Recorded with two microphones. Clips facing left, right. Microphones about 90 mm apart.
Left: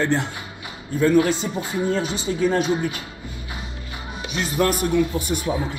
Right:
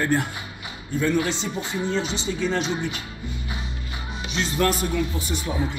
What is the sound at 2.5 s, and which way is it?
Speech, 45° left (ahead or behind).